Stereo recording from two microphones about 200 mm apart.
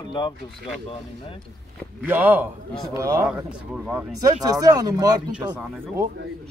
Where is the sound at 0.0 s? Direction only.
25° left (ahead or behind).